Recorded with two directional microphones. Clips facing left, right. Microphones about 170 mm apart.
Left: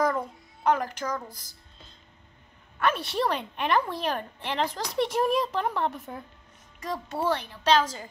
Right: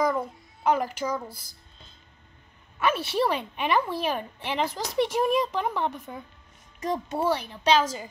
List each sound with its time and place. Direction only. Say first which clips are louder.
0.0 s a child's voice: right 1 dB; centre (ahead or behind)
2.8 s a woman's voice: right 2 dB; 5° right (ahead or behind)
6.8 s a child's voice: right 3 dB; 20° right (ahead or behind)